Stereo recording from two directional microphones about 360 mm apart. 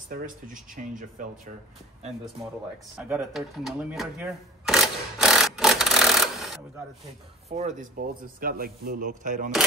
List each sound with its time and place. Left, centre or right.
1.2 s speech: right
3.0 s a sound: centre
7.4 s speech: right